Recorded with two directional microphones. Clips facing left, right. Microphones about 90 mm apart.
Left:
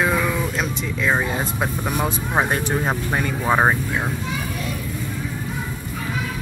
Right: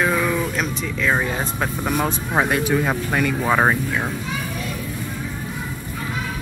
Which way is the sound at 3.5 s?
15° left (ahead or behind).